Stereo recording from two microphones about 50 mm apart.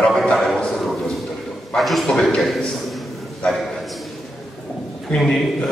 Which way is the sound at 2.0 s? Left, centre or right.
Centre.